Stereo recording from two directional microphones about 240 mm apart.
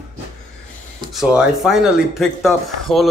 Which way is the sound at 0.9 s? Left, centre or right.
Centre.